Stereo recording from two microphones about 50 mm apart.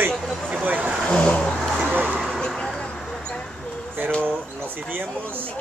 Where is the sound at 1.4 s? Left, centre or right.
Centre.